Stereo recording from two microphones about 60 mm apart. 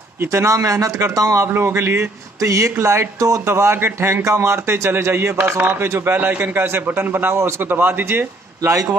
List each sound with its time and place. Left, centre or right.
0.2 s speech: right
1.4 s speech: right
2.4 s speech: right
2.7 s speech: right
3.2 s speech: right
3.4 s speech: right
4.2 s speech: right